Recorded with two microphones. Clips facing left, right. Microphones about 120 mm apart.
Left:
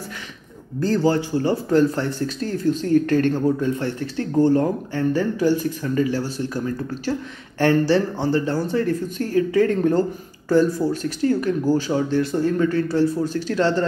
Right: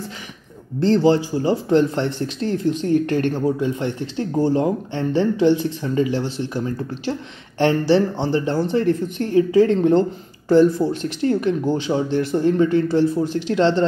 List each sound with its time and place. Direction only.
0.7 s speech: 20° right (ahead or behind)